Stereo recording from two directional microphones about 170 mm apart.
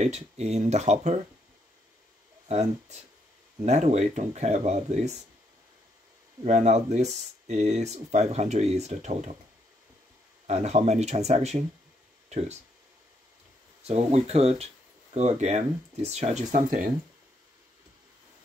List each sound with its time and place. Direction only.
0.0 s speech: 40° right (ahead or behind)
2.4 s speech: 40° right (ahead or behind)
6.4 s speech: 45° right (ahead or behind)
10.4 s speech: 40° right (ahead or behind)
13.8 s speech: 40° right (ahead or behind)